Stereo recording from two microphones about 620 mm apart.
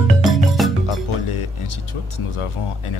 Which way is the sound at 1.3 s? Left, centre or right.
Left.